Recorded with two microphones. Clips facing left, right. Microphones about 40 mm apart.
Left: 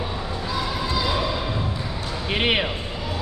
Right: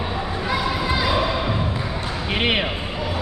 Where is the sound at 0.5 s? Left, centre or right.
Right.